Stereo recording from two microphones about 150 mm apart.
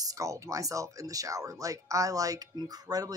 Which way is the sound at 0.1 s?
20° right (ahead or behind).